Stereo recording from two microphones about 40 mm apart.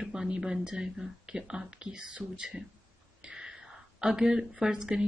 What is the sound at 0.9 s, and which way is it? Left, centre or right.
A woman's voice, centre.